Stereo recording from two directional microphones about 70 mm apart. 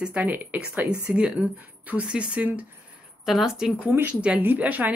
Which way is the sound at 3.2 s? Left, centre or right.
Centre.